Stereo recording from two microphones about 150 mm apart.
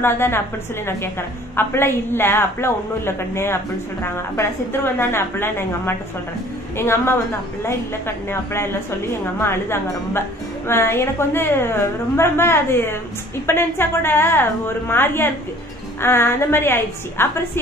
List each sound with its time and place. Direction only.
0.0 s a woman's voice: 15° left (ahead or behind)
1.6 s a woman's voice: 15° left (ahead or behind)
8.3 s a woman's voice: 15° left (ahead or behind)